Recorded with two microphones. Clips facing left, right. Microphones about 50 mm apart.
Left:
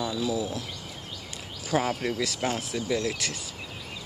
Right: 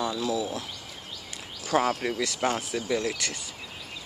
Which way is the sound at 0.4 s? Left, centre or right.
Centre.